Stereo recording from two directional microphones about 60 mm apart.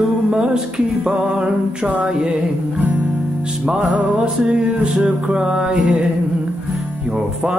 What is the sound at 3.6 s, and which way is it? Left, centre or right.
Music, centre.